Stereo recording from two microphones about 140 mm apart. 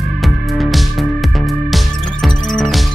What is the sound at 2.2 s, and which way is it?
Music, centre (ahead or behind).